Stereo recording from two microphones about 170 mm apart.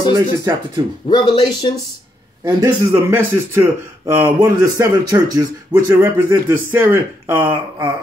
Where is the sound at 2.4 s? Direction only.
20° right (ahead or behind).